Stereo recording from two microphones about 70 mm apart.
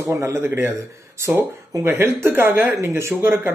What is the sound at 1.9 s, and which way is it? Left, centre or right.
Speech, right.